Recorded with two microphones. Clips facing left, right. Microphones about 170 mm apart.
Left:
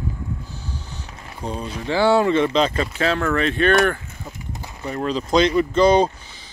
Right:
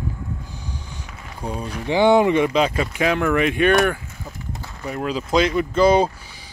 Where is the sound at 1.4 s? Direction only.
10° right (ahead or behind).